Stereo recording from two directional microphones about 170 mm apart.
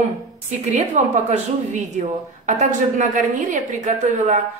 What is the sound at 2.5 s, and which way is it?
A woman's voice, 45° right (ahead or behind).